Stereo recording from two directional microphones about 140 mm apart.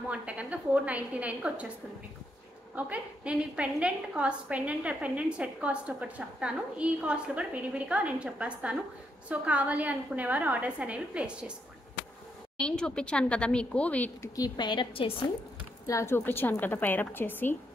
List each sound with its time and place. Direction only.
0.1 s a woman's voice: 10° right (ahead or behind)
2.7 s a woman's voice: 10° right (ahead or behind)
12.5 s speech: 5° left (ahead or behind)
14.3 s a woman's voice: 30° left (ahead or behind)
15.9 s speech: 20° left (ahead or behind)